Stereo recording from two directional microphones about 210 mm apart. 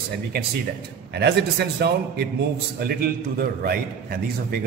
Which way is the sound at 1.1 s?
50° right (ahead or behind).